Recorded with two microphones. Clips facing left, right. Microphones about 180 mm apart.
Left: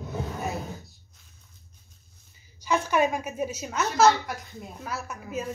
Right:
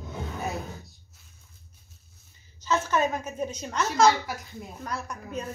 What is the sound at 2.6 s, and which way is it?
A woman's voice, 10° left (ahead or behind).